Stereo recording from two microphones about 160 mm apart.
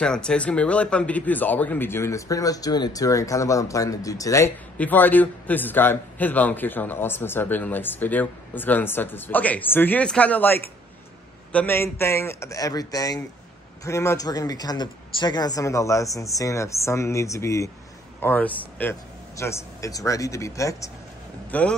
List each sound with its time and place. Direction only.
0.0 s a man's voice: 5° left (ahead or behind)
21.5 s a man's voice: 10° left (ahead or behind)